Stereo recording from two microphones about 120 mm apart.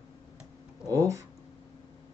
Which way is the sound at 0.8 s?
25° right (ahead or behind).